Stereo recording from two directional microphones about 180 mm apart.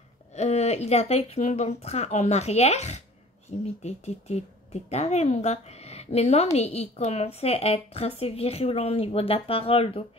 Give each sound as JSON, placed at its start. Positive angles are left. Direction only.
{"t": 0.3, "sound": "a woman's voice", "side_deg": 40}